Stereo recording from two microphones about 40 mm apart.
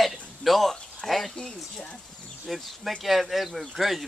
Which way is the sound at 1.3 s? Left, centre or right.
Left.